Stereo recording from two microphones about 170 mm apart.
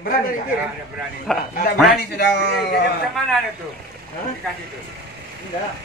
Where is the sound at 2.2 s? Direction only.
80° left.